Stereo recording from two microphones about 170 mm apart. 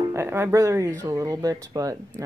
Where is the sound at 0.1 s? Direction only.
15° right (ahead or behind).